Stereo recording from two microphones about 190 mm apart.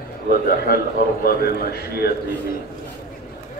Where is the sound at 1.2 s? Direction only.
55° left (ahead or behind).